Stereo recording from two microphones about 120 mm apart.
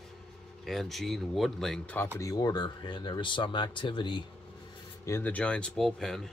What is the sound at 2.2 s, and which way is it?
Speech, 30° left (ahead or behind).